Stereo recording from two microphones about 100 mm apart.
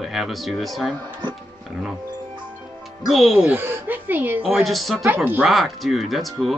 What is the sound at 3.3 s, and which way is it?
A woman's voice, 15° right (ahead or behind).